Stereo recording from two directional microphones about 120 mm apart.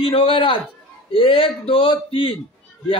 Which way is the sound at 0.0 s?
50° left (ahead or behind).